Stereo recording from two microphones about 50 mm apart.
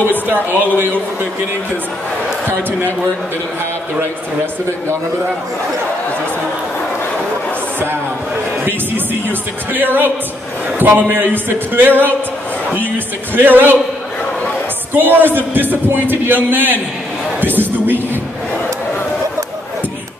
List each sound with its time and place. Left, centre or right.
0.3 s a man's voice: right
8.6 s a man's voice: right
15.0 s a man's voice: right